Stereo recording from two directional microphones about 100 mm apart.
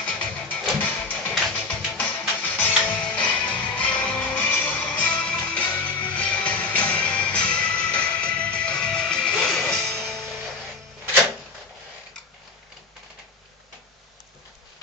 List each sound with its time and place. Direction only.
0.1 s music: 10° left (ahead or behind)